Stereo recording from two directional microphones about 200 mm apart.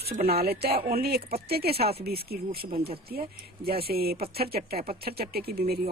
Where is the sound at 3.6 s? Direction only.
50° right (ahead or behind).